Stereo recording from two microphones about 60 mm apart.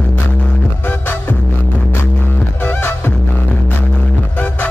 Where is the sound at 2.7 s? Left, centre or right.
Left.